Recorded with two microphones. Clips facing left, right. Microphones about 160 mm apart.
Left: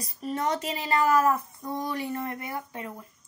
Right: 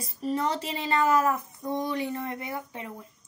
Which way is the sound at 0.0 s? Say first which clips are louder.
Right 1 dB; 30° right (ahead or behind).